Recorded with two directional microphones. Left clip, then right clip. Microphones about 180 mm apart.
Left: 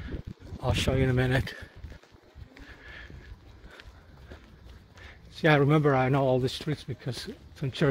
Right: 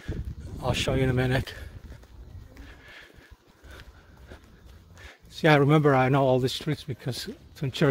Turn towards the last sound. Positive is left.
turn(degrees=-25)  # may be behind; listen again after turning